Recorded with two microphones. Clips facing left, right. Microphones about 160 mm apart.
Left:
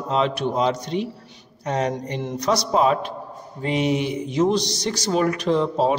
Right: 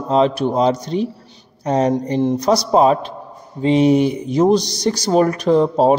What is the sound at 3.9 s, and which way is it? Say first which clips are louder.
Speech: right 8 dB; 40° right (ahead or behind).